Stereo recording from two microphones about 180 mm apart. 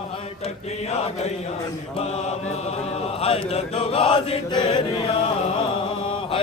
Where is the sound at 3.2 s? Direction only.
35° left (ahead or behind).